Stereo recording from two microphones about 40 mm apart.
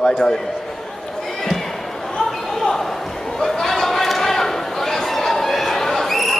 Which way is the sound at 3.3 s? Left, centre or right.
Centre.